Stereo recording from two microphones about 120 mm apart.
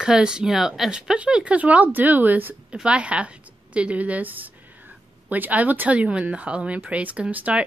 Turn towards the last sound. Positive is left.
turn(degrees=-10)  # may be behind; listen again after turning